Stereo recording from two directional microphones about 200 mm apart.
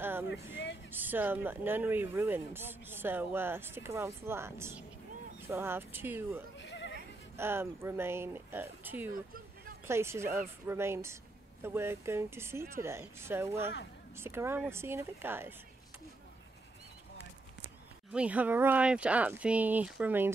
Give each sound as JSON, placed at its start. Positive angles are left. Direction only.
{"t": 0.0, "sound": "vehicle", "side_deg": -10}
{"t": 0.9, "sound": "speech", "side_deg": -10}
{"t": 6.6, "sound": "bleat", "side_deg": 60}
{"t": 7.3, "sound": "speech", "side_deg": -10}
{"t": 9.1, "sound": "vehicle", "side_deg": -45}
{"t": 9.8, "sound": "speech", "side_deg": -15}
{"t": 18.1, "sound": "speech", "side_deg": -5}